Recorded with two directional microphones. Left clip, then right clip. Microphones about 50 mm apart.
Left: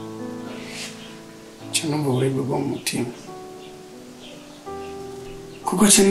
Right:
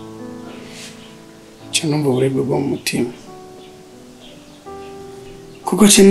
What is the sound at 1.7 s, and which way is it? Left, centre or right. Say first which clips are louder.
Speech: right 6 dB; centre.